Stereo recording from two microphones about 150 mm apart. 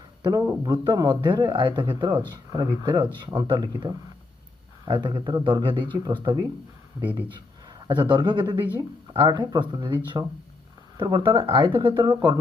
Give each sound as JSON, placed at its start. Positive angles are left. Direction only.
{"t": 0.2, "sound": "a man's voice", "side_deg": -25}
{"t": 7.8, "sound": "speech", "side_deg": -30}